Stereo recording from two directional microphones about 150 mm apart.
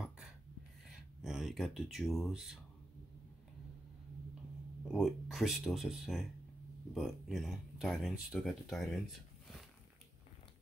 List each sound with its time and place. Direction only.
1.2 s speech: 5° right (ahead or behind)
4.9 s speech: centre (ahead or behind)